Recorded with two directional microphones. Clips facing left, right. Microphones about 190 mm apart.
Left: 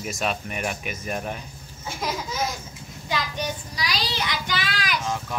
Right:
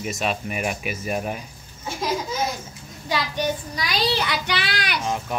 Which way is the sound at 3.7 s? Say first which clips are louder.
Right 5 dB; 50° right (ahead or behind).